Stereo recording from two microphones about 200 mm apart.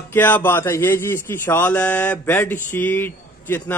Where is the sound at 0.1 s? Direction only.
10° left (ahead or behind).